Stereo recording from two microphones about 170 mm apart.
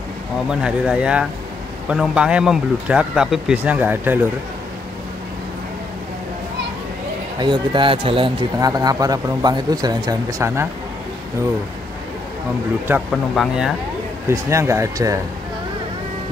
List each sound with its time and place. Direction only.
0.5 s speech: 5° right (ahead or behind)
7.3 s speech: 25° right (ahead or behind)
13.1 s speech: centre (ahead or behind)
14.3 s speech: 15° right (ahead or behind)